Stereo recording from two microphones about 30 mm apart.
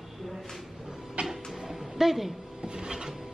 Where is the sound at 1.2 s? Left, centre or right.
Right.